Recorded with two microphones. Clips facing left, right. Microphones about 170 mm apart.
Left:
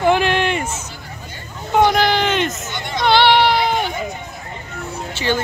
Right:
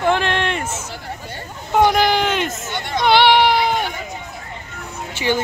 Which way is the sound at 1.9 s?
10° right (ahead or behind).